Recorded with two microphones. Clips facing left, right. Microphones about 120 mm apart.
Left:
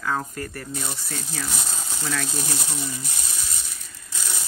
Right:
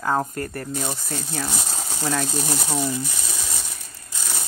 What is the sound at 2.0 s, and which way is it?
Speech, 40° right (ahead or behind).